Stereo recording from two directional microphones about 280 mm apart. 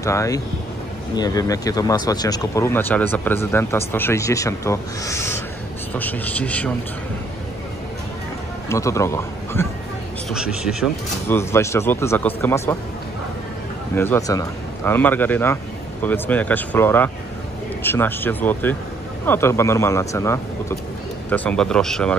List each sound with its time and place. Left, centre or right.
0.0 s speech: centre
8.6 s speech: centre
10.3 s speech: centre
11.3 s speech: centre
13.9 s speech: centre